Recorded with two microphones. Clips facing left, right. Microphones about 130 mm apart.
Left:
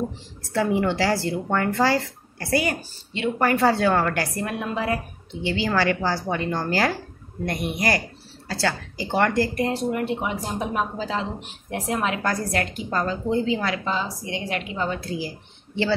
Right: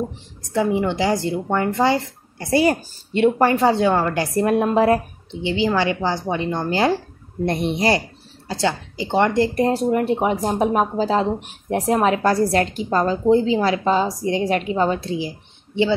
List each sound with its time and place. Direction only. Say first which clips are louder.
0.4 s speech: right 2 dB; 15° right (ahead or behind)
2.6 s speech: right 8 dB; 35° right (ahead or behind)
4.4 s speech: right 10 dB; 40° right (ahead or behind)
5.3 s speech: right 4 dB; 20° right (ahead or behind)
9.6 s speech: right 6 dB; 40° right (ahead or behind); by 15.9 s 20° right (ahead or behind)